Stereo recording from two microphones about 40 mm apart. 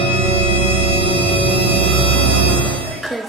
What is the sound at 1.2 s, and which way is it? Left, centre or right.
Scary music, left.